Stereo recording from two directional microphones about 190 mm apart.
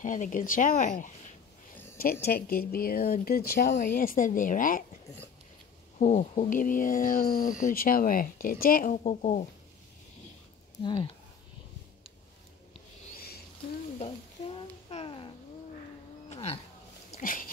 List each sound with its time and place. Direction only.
0.0 s speech: 40° left (ahead or behind)
2.2 s speech: 55° left (ahead or behind)
5.9 s speech: 40° left (ahead or behind)
10.8 s speech: 25° left (ahead or behind)
13.9 s a sound: 30° left (ahead or behind)
17.1 s a sound: 45° left (ahead or behind)